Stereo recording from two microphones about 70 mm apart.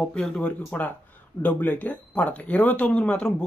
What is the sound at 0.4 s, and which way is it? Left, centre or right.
Speech, left.